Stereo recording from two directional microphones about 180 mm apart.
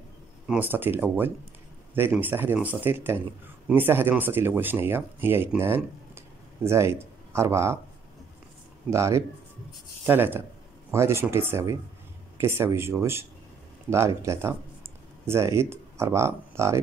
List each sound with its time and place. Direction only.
0.5 s speech: 10° right (ahead or behind)
8.9 s speech: 15° right (ahead or behind)